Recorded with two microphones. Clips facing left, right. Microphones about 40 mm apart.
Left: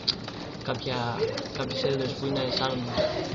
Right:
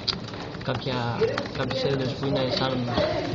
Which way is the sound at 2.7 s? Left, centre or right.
Right.